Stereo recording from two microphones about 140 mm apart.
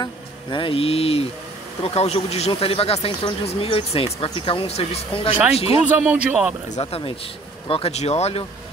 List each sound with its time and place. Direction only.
0.0 s speech: 35° left (ahead or behind)
5.9 s speech: 10° right (ahead or behind)
6.7 s speech: 45° left (ahead or behind)